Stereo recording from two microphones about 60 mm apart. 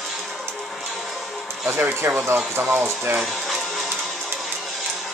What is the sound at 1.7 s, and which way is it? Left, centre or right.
Speech, right.